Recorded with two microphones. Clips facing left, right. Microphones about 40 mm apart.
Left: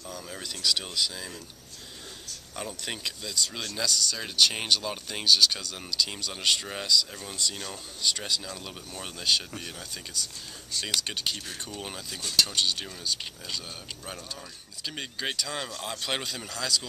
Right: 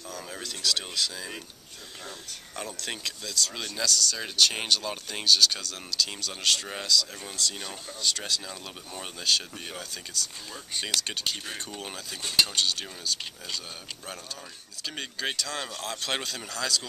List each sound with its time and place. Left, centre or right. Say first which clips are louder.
0.4 s speech: even; centre
2.5 s speech: even; centre
8.5 s speech: left 1 dB; centre
10.9 s speech: even; centre
12.2 s speech: right 1 dB; centre
12.5 s speech: even; centre
15.0 s speech: right 1 dB; centre